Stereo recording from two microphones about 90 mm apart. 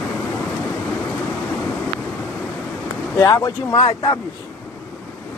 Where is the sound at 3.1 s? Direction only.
40° left (ahead or behind).